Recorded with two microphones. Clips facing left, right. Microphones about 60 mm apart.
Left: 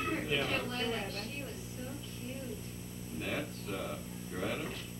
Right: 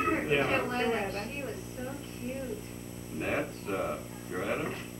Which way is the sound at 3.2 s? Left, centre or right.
Right.